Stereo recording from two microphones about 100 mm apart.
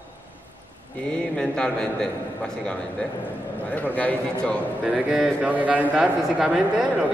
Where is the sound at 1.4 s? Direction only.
5° left (ahead or behind).